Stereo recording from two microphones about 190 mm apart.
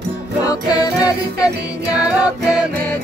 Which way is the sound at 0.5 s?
20° left (ahead or behind).